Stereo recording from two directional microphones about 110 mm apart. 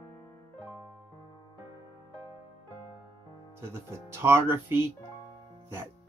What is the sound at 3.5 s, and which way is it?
Speech, 20° right (ahead or behind).